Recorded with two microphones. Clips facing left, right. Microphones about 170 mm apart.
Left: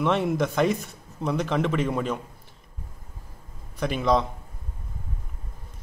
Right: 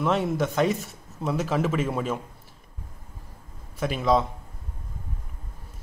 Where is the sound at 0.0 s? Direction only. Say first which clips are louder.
Left 1 dB; centre (ahead or behind).